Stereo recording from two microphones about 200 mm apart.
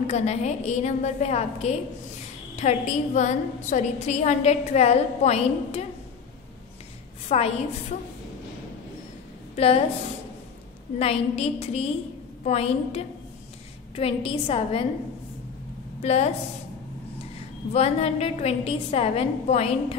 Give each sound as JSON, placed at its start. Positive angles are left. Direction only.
{"t": 0.0, "sound": "a woman's voice", "side_deg": 35}
{"t": 7.2, "sound": "a woman's voice", "side_deg": 30}
{"t": 9.6, "sound": "a woman's voice", "side_deg": 30}
{"t": 11.0, "sound": "a woman's voice", "side_deg": 30}
{"t": 16.0, "sound": "a woman's voice", "side_deg": 35}
{"t": 17.7, "sound": "a woman's voice", "side_deg": 30}